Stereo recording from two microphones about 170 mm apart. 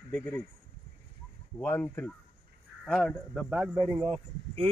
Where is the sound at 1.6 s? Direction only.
10° left (ahead or behind).